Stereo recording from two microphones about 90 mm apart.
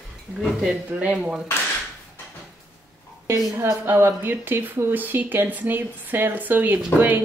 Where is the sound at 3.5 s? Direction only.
25° right (ahead or behind).